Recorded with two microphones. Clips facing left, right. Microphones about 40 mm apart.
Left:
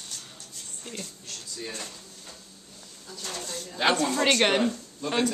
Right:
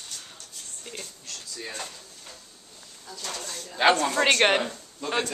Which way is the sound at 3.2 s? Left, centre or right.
Right.